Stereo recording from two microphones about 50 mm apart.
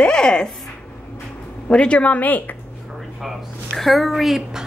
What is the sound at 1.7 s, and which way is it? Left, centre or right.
Speech, left.